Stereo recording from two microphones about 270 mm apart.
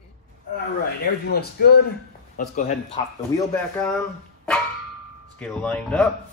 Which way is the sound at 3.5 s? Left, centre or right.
Centre.